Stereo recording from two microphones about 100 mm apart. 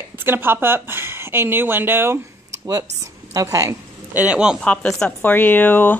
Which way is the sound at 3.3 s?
35° right (ahead or behind).